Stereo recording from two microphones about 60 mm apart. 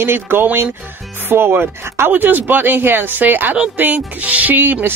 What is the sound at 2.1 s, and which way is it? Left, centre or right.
Speech, right.